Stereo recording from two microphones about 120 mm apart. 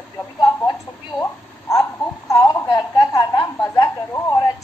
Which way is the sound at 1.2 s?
25° left (ahead or behind).